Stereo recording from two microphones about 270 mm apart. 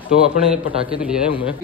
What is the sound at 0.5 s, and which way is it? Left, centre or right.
Speech, right.